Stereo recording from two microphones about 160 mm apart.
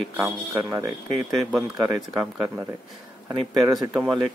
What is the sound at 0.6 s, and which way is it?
Speech, 15° right (ahead or behind).